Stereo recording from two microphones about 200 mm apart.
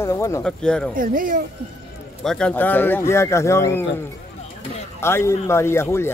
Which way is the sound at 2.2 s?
5° left (ahead or behind).